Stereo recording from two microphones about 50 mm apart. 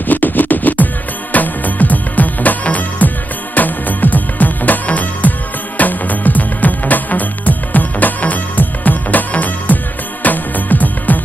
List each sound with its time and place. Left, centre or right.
0.1 s music: left